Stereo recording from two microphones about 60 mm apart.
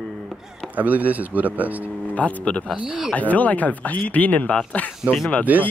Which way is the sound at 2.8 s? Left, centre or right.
Centre.